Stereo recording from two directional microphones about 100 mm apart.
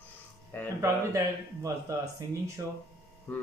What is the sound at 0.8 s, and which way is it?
Speech, 30° right (ahead or behind).